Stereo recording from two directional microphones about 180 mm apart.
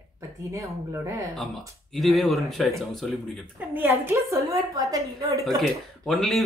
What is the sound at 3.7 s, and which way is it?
A woman's voice, 10° right (ahead or behind).